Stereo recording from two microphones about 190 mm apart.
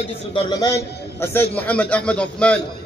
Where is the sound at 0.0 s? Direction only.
30° left (ahead or behind); by 2.6 s 5° left (ahead or behind).